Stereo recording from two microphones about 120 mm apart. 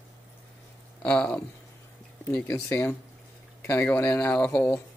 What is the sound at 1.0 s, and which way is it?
Speech, 10° left (ahead or behind).